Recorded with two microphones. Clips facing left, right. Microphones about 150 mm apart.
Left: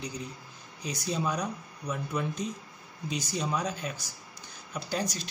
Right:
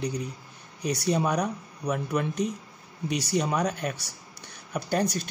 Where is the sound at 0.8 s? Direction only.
65° right (ahead or behind).